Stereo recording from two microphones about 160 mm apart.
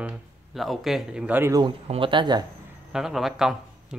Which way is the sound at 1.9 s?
30° right (ahead or behind).